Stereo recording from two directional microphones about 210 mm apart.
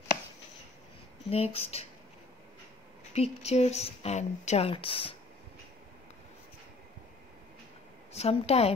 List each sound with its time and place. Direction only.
1.3 s speech: 30° left (ahead or behind)
3.1 s speech: 30° left (ahead or behind)
8.1 s speech: 30° left (ahead or behind)